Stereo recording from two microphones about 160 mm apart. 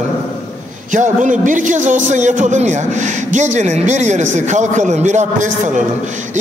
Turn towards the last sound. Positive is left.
turn(degrees=-50)  # may be behind; listen again after turning